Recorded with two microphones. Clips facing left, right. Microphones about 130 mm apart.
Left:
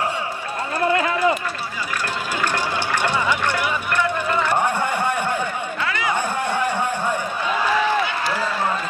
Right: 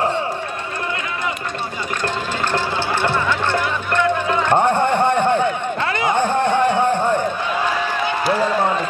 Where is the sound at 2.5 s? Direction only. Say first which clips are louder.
Right 4 dB; 10° left (ahead or behind).